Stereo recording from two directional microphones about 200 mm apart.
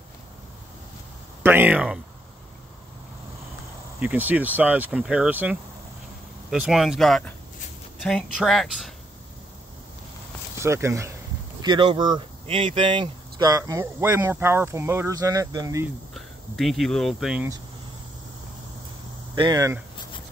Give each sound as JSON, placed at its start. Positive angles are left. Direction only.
{"t": 1.4, "sound": "speech", "side_deg": -10}
{"t": 4.0, "sound": "speech", "side_deg": -10}
{"t": 10.6, "sound": "speech", "side_deg": -15}
{"t": 16.1, "sound": "speech", "side_deg": 0}
{"t": 19.3, "sound": "speech", "side_deg": -20}